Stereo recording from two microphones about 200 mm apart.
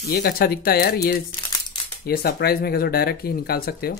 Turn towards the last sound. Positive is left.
turn(degrees=50)  # may be behind; listen again after turning